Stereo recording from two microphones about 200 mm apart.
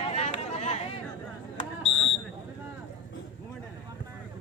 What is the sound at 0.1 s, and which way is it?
Chatter, 30° left (ahead or behind).